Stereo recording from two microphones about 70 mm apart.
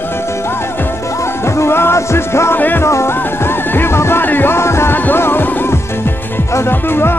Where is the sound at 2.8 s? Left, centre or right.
Left.